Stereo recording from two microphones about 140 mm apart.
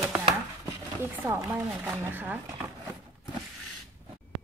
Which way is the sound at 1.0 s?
15° right (ahead or behind).